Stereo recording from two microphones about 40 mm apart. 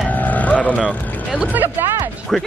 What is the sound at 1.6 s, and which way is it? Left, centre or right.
Speech, right.